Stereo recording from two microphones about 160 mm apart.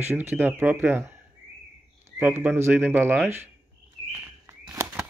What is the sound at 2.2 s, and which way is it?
Speech, 10° right (ahead or behind).